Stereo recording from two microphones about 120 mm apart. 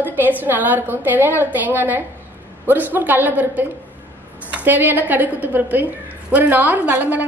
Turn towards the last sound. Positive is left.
turn(degrees=-15)  # may be behind; listen again after turning